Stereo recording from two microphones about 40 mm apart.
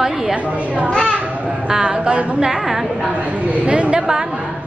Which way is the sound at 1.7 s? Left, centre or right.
Right.